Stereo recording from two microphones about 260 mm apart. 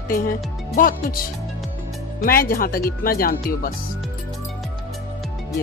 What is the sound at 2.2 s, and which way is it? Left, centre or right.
Speech, left.